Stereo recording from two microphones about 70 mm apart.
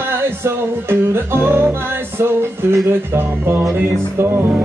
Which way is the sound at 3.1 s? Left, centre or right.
Right.